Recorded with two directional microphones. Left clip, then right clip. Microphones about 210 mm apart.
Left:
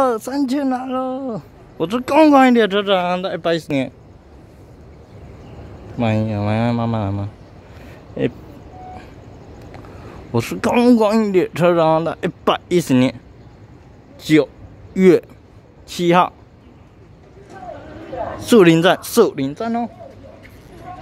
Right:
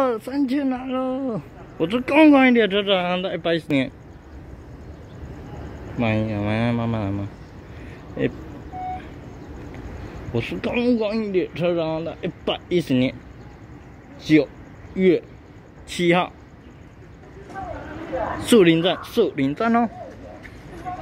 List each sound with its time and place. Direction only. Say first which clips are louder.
0.0 s a woman's voice: left 4 dB; 20° left (ahead or behind)
5.9 s a woman's voice: left 3 dB; 20° left (ahead or behind)
10.3 s speech: left 7 dB; 35° left (ahead or behind)
14.2 s speech: left 3 dB; 40° left (ahead or behind)
15.9 s a woman's voice: left 5 dB; 20° left (ahead or behind)
18.6 s speech: left 7 dB; 35° left (ahead or behind)
19.3 s speech: even; 15° left (ahead or behind)
19.6 s speech: right 3 dB; 5° right (ahead or behind)